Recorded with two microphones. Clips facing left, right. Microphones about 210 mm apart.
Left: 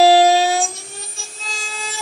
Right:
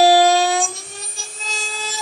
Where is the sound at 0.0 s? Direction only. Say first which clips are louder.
Left 1 dB; centre (ahead or behind).